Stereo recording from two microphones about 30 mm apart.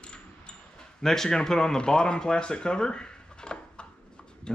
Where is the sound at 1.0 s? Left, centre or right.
Centre.